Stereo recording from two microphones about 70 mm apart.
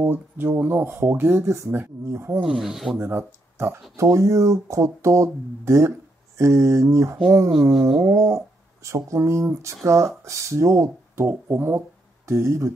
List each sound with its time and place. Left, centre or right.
0.0 s speech: right
2.4 s speech: centre
3.0 s speech: right
11.2 s speech: right